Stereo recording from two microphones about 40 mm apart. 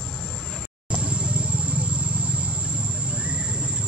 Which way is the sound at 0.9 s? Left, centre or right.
Right.